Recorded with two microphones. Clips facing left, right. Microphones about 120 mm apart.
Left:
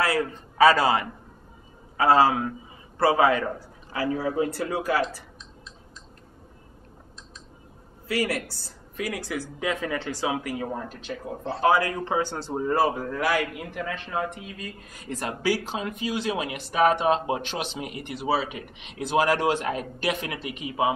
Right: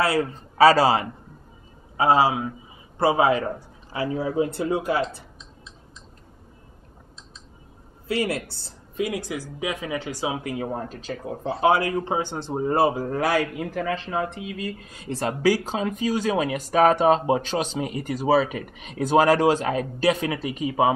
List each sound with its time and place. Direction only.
0.0 s a man's voice: 30° right (ahead or behind)
2.0 s a man's voice: 15° right (ahead or behind)
8.1 s a man's voice: 25° right (ahead or behind)
10.2 s a man's voice: 25° right (ahead or behind)
10.7 s speech: 40° right (ahead or behind)
11.6 s a man's voice: 25° right (ahead or behind)